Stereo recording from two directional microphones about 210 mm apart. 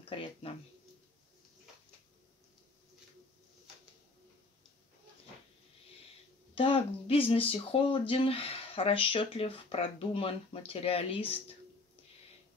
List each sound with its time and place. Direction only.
0.0 s speech: 25° left (ahead or behind)
6.5 s speech: 25° left (ahead or behind)